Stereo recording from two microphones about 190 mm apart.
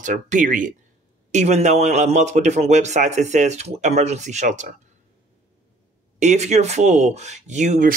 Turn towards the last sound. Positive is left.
turn(degrees=-40)  # may be behind; listen again after turning